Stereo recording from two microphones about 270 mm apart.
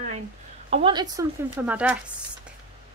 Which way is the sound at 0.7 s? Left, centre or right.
Centre.